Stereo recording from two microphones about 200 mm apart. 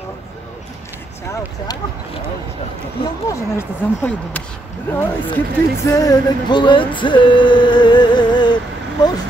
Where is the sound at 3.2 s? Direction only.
15° left (ahead or behind).